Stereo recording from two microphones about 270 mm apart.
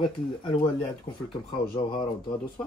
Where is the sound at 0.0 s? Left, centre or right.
Centre.